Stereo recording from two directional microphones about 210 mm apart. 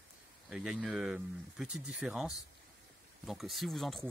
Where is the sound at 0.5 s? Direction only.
5° right (ahead or behind).